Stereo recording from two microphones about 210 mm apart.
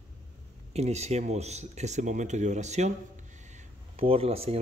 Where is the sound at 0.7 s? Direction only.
30° right (ahead or behind).